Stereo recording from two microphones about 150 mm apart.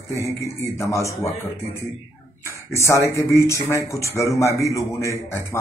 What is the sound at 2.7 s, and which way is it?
A man's voice, 20° left (ahead or behind).